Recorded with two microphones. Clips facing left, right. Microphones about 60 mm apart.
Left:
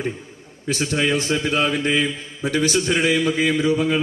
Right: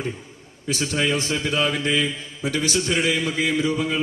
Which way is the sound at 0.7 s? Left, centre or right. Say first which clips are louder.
Left 2 dB; left.